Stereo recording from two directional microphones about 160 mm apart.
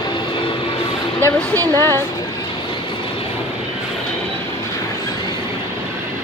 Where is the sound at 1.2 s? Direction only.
20° right (ahead or behind).